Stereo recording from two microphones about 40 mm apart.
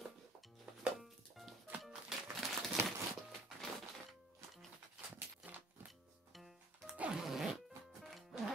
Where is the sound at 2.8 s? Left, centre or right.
Right.